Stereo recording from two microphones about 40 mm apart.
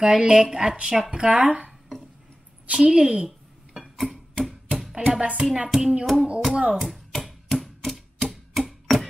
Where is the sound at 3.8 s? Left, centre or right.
Centre.